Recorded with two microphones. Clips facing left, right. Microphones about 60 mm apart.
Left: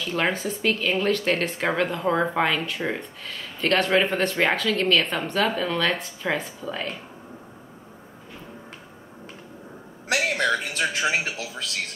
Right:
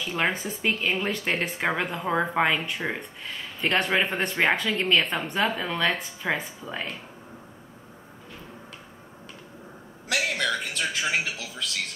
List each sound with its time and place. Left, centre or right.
0.0 s speech: centre
10.0 s a man's voice: left